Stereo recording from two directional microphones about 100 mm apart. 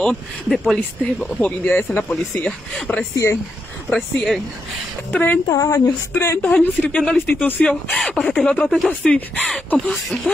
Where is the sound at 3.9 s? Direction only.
Centre (ahead or behind).